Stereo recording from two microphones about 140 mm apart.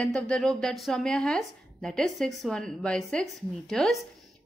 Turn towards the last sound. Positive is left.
turn(degrees=0)  # may be behind; listen again after turning